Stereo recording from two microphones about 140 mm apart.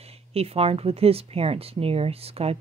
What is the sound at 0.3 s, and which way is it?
Speech, 45° right (ahead or behind).